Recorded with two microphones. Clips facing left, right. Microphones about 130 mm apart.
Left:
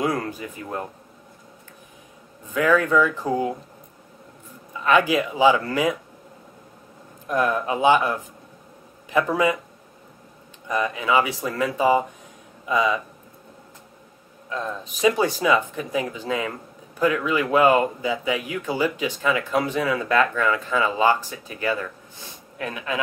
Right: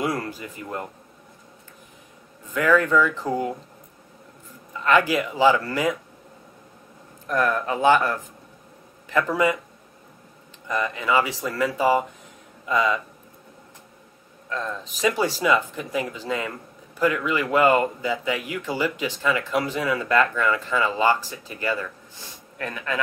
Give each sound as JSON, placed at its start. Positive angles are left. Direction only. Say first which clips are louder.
{"t": 0.2, "sound": "speech", "louder": "left 2 dB", "side_deg": 15}
{"t": 2.5, "sound": "speech", "louder": "even", "side_deg": 15}
{"t": 4.8, "sound": "speech", "louder": "left 1 dB", "side_deg": 15}
{"t": 7.2, "sound": "speech", "louder": "left 1 dB", "side_deg": 15}
{"t": 10.7, "sound": "speech", "louder": "left 1 dB", "side_deg": 15}
{"t": 14.5, "sound": "speech", "louder": "left 1 dB", "side_deg": 10}